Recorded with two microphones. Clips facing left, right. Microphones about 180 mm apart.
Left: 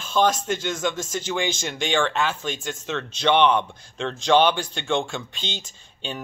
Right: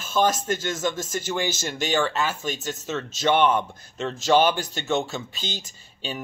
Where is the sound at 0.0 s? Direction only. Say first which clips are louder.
Left 1 dB; 5° right (ahead or behind).